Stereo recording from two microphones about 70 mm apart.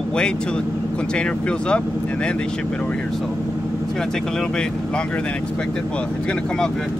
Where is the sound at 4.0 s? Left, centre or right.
Centre.